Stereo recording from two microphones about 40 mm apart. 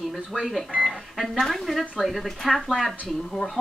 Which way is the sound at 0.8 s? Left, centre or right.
Centre.